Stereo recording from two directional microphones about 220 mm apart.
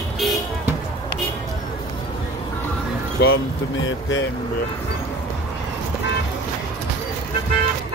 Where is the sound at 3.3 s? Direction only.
60° left (ahead or behind).